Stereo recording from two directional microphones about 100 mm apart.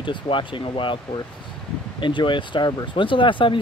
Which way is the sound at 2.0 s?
55° left (ahead or behind).